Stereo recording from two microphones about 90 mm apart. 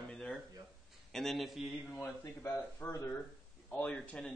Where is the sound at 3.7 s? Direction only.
15° left (ahead or behind).